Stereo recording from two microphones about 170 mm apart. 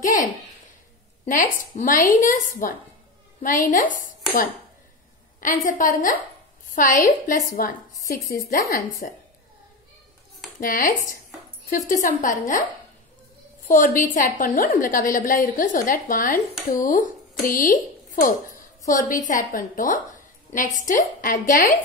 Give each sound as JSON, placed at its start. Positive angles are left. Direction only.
{"t": 0.0, "sound": "a woman's voice", "side_deg": 50}
{"t": 5.4, "sound": "a woman's voice", "side_deg": 50}
{"t": 10.6, "sound": "a woman's voice", "side_deg": 55}
{"t": 13.7, "sound": "a woman's voice", "side_deg": 50}